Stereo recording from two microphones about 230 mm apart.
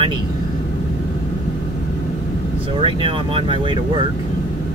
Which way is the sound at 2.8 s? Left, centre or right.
Right.